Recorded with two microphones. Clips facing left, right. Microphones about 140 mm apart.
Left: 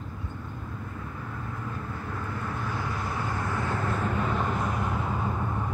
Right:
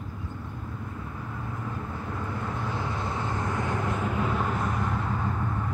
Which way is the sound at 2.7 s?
25° right (ahead or behind).